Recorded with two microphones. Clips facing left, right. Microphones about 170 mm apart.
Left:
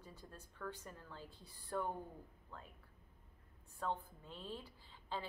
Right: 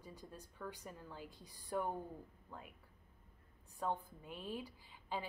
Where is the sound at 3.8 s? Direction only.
15° right (ahead or behind).